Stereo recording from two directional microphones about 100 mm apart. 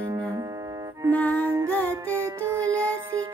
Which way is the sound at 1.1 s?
15° left (ahead or behind).